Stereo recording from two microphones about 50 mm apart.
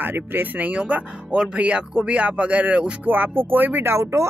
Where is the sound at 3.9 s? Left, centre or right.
Right.